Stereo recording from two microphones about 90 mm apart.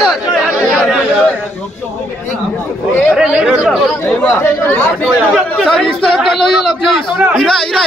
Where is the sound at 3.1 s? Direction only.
10° right (ahead or behind).